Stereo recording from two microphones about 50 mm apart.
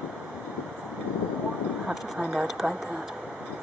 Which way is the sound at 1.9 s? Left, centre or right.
Centre.